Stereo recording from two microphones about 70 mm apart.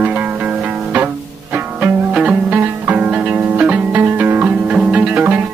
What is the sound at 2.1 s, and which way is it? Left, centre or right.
Music, centre.